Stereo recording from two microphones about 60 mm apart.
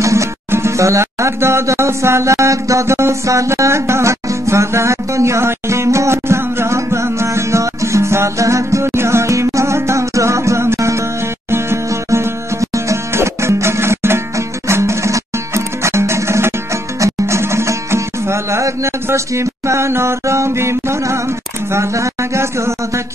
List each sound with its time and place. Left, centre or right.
0.0 s music: right
21.7 s speech: right